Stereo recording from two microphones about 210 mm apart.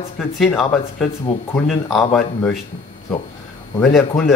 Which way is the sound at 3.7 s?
Centre (ahead or behind).